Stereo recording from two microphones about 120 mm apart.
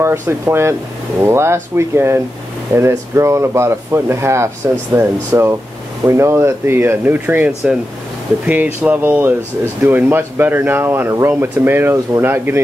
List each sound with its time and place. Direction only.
0.0 s speech: 20° right (ahead or behind)
8.8 s speech: 15° right (ahead or behind)